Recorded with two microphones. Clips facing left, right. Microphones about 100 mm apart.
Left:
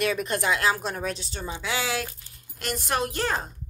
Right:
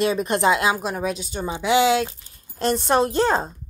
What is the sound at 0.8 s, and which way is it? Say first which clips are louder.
Speech: right 5 dB; 5° right (ahead or behind).